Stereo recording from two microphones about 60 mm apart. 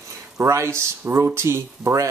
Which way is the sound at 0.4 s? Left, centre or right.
Right.